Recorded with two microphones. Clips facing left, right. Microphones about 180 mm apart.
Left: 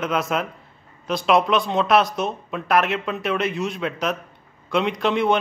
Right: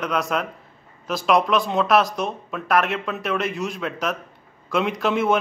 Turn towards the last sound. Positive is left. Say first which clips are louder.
# left 1 dB
turn(degrees=-5)  # may be behind; listen again after turning